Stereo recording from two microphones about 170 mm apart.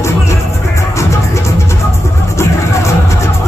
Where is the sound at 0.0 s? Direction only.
15° left (ahead or behind).